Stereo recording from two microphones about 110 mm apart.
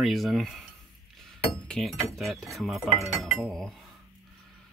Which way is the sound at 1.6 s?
5° left (ahead or behind).